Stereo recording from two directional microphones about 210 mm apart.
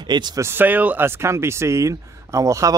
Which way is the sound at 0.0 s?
20° right (ahead or behind).